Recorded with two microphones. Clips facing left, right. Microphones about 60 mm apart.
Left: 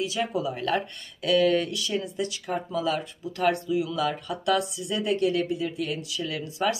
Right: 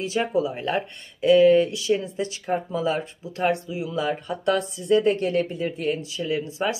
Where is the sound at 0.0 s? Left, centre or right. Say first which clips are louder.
Right 4 dB; right.